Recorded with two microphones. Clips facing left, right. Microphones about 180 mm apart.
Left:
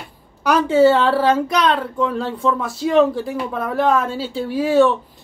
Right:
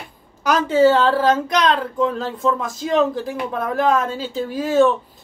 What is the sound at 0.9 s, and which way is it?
Speech, 10° left (ahead or behind).